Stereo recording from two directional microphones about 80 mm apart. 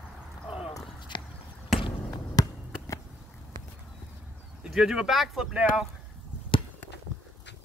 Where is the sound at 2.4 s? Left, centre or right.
Left.